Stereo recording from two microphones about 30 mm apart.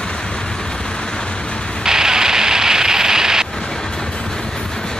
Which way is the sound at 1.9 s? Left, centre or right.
Centre.